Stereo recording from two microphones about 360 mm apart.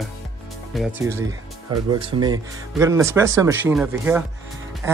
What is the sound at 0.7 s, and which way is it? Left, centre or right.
Speech, centre.